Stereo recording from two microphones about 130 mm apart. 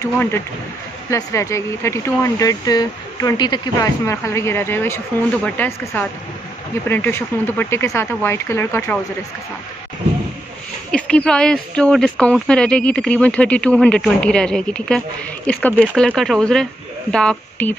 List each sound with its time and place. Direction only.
0.0 s speech: 20° left (ahead or behind)
4.0 s speech: 20° left (ahead or behind)
10.9 s speech: 10° left (ahead or behind)